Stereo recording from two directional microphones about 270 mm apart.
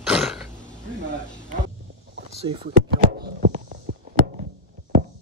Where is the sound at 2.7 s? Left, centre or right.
Right.